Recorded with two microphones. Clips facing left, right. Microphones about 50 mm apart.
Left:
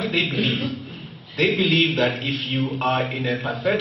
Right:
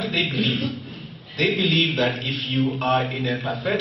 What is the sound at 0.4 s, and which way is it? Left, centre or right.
A man's voice, centre.